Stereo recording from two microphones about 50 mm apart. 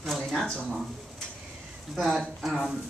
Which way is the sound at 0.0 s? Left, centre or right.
Centre.